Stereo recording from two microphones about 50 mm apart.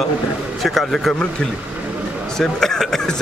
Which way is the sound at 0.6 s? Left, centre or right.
Centre.